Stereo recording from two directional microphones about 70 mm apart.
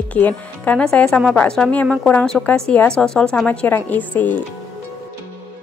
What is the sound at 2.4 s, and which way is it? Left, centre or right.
Speech, centre.